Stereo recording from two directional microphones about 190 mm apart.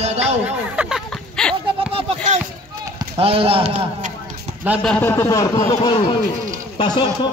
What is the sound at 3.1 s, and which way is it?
Speech, 30° right (ahead or behind).